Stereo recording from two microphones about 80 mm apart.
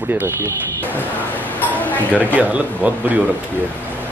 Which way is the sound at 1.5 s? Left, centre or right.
Left.